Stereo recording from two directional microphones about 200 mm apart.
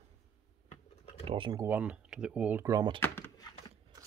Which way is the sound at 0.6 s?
30° left (ahead or behind).